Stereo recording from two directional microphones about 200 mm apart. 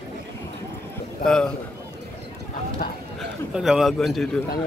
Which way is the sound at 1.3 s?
5° left (ahead or behind).